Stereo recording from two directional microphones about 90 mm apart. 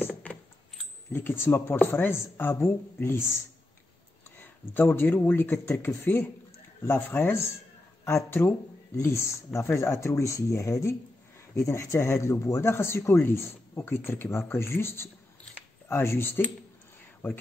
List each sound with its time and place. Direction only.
0.0 s a sound: 25° left (ahead or behind)
1.1 s speech: 25° left (ahead or behind)
4.4 s speech: 25° left (ahead or behind)